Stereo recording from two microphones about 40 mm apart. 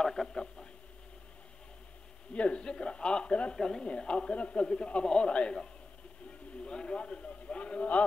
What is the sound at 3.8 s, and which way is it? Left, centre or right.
A man's voice, left.